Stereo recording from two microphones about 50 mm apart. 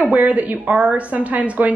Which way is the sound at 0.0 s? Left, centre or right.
Right.